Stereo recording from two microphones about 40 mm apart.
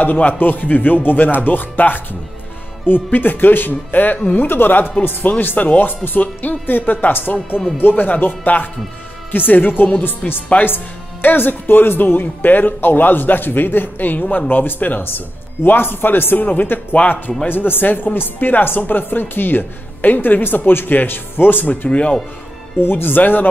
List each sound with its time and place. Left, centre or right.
0.0 s speech: left
9.3 s speech: left
21.8 s speech: left
22.8 s speech: left